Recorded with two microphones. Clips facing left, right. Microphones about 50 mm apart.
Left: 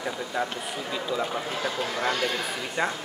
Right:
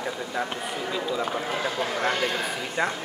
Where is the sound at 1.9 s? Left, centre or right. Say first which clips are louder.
Right 1 dB; centre.